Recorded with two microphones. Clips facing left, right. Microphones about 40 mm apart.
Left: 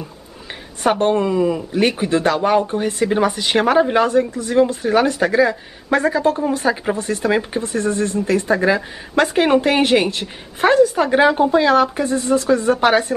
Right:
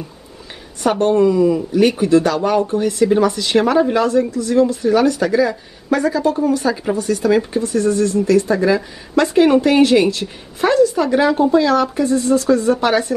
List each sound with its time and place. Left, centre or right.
0.8 s speech: left